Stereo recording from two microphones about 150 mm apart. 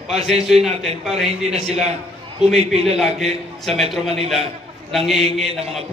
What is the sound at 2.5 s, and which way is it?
Speech, 45° right (ahead or behind).